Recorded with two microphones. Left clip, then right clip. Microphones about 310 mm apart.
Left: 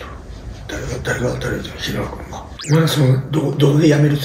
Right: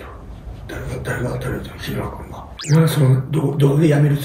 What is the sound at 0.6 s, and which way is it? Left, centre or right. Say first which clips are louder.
A man's voice: left 4 dB; centre.